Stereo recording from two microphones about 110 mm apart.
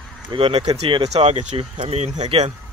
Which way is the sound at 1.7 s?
75° right (ahead or behind).